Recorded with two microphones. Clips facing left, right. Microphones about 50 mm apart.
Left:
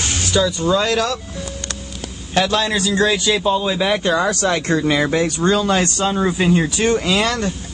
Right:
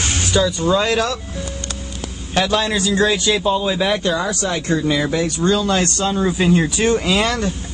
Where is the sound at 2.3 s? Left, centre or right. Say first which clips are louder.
Even; centre.